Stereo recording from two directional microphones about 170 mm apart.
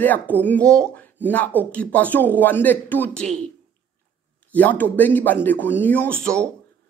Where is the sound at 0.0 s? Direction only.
10° left (ahead or behind).